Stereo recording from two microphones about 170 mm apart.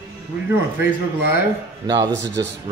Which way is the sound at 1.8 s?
25° right (ahead or behind).